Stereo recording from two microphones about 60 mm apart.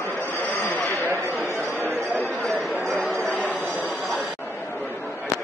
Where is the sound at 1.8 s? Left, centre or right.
Right.